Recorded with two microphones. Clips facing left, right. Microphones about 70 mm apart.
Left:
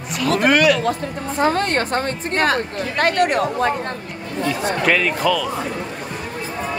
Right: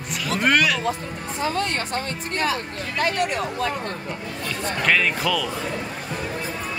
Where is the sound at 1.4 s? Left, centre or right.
Left.